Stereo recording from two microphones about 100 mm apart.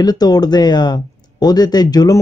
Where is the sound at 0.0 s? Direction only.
40° left (ahead or behind).